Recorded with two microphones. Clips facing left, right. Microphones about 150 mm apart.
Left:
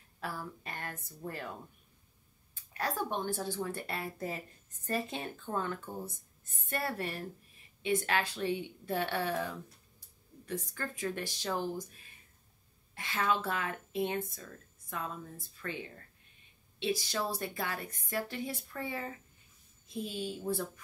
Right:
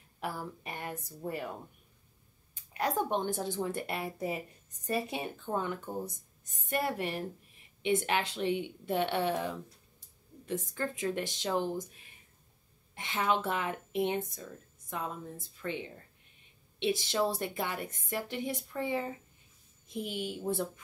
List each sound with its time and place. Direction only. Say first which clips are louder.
0.2 s a woman's voice: right 3 dB; 20° right (ahead or behind)
2.5 s a woman's voice: right 4 dB; 20° right (ahead or behind)